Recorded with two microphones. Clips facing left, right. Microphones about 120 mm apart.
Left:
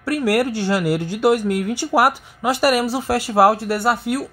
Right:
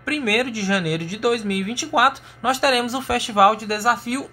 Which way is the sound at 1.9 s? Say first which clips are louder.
Left 2 dB; 35° left (ahead or behind).